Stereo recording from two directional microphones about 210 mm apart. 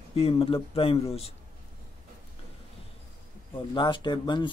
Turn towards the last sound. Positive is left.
turn(degrees=20)  # may be behind; listen again after turning